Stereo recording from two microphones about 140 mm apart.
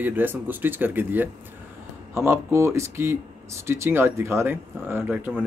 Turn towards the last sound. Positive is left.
turn(degrees=-10)  # may be behind; listen again after turning